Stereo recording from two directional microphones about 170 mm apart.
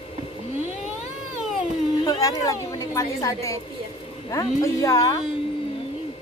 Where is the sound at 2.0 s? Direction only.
25° left (ahead or behind).